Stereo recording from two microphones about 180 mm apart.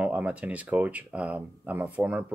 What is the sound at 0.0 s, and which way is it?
Speech, 5° right (ahead or behind).